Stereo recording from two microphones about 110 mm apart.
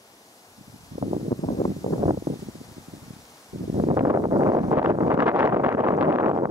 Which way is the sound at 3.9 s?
30° right (ahead or behind).